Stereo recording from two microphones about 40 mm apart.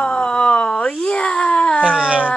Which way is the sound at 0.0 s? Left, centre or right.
Left.